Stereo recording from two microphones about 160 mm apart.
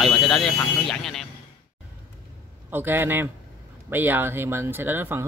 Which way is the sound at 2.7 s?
15° right (ahead or behind).